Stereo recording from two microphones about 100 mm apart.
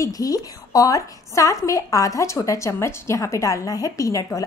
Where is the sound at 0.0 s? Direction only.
40° left (ahead or behind).